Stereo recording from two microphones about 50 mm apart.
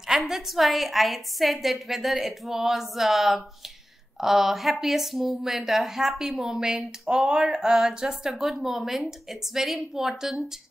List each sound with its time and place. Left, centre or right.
0.2 s a woman's voice: centre